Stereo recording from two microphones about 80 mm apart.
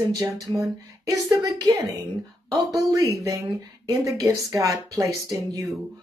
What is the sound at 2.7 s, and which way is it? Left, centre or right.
Speech, right.